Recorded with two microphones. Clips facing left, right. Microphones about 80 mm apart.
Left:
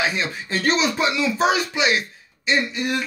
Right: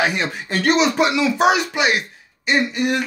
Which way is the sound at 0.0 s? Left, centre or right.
Right.